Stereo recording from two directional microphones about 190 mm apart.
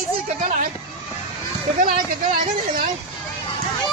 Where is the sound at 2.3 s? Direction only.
40° right (ahead or behind).